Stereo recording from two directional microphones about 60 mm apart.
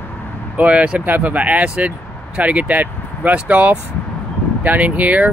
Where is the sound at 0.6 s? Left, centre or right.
Right.